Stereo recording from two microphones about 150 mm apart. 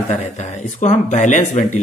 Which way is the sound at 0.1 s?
50° left (ahead or behind).